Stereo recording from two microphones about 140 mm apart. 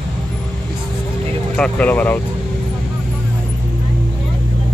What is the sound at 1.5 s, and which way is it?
Speech, 10° left (ahead or behind).